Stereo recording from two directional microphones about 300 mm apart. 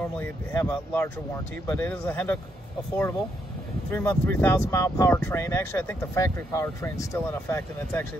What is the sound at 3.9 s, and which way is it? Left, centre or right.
Speech, centre.